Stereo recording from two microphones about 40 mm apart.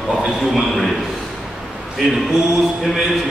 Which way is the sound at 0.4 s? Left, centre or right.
Centre.